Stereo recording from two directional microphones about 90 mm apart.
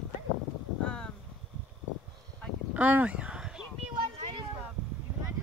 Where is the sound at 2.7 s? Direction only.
20° right (ahead or behind).